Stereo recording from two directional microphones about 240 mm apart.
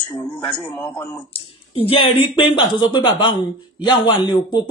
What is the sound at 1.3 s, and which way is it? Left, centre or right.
A man's voice, left.